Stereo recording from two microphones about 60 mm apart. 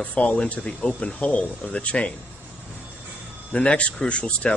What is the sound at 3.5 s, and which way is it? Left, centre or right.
A man's voice, centre.